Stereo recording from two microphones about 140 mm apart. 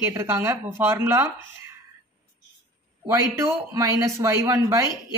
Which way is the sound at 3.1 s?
20° right (ahead or behind).